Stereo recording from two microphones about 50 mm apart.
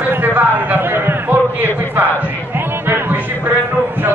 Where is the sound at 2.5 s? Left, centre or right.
Right.